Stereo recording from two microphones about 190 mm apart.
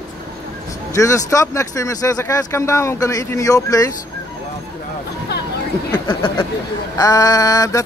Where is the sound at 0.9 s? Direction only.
15° left (ahead or behind).